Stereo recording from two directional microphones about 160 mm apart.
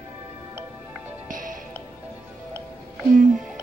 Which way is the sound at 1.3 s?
55° right (ahead or behind).